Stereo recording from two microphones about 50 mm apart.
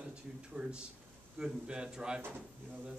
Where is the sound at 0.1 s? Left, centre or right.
Centre.